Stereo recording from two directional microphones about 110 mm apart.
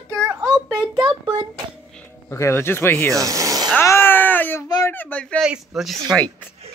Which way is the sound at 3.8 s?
20° left (ahead or behind).